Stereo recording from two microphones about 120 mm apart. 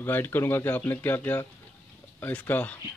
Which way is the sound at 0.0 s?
15° left (ahead or behind).